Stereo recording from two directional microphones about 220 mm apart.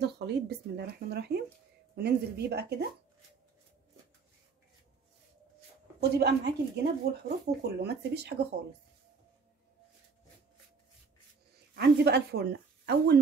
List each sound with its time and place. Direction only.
0.0 s speech: 50° right (ahead or behind)
5.9 s speech: 50° right (ahead or behind)
11.7 s speech: 45° right (ahead or behind)